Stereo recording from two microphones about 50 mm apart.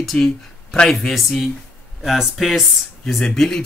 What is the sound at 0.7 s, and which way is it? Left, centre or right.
Speech, centre.